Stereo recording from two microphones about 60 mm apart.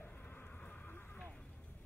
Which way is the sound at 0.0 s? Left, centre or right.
Left.